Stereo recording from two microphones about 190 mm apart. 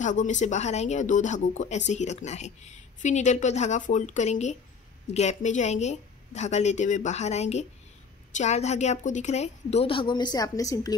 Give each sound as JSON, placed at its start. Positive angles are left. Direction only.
{"t": 0.0, "sound": "speech", "side_deg": 40}